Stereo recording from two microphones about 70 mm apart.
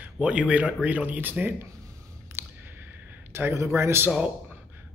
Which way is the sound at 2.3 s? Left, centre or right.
Right.